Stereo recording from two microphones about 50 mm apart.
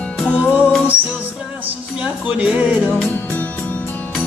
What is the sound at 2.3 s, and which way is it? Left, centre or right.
Music, right.